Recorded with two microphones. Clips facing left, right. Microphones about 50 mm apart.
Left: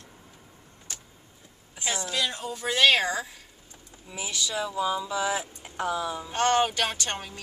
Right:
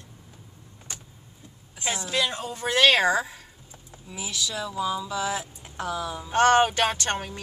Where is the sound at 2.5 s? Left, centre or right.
Centre.